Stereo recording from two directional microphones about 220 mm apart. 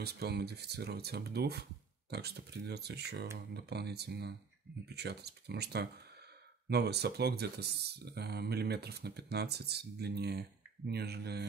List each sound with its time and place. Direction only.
0.0 s speech: 50° right (ahead or behind)